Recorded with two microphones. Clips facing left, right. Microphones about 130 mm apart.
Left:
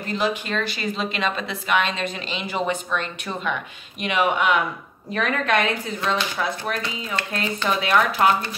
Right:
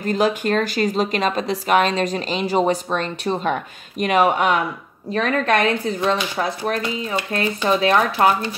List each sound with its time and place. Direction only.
0.0 s speech: 45° right (ahead or behind)